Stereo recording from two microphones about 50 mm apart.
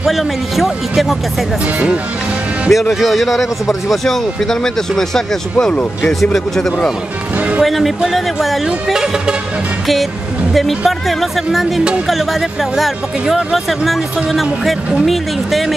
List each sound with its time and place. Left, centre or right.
0.0 s speech: centre
2.7 s speech: centre
5.7 s speech: left
6.3 s speech: centre
10.9 s speech: centre